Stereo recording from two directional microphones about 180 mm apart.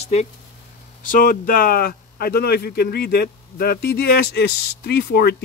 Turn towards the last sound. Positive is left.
turn(degrees=60)  # may be behind; listen again after turning